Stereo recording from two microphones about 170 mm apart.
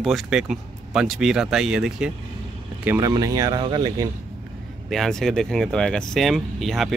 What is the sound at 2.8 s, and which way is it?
Speech, 15° right (ahead or behind).